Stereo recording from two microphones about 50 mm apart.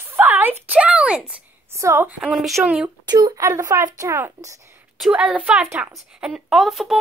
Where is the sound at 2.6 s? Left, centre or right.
Right.